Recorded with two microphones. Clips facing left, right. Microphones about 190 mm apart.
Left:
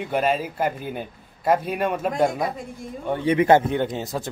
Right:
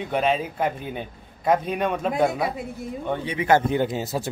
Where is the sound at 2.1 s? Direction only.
5° right (ahead or behind).